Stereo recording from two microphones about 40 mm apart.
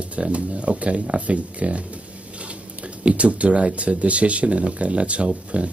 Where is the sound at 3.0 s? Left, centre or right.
Right.